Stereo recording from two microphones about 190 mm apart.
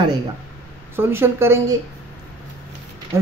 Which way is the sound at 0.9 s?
10° right (ahead or behind).